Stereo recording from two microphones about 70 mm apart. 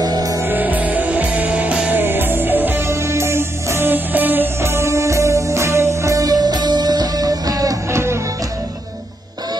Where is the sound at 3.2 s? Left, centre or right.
Right.